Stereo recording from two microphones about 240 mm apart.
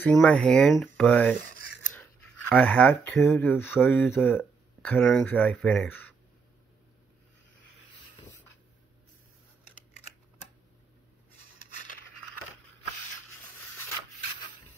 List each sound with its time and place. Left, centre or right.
0.0 s speech: centre
1.4 s scissors: left
2.5 s speech: centre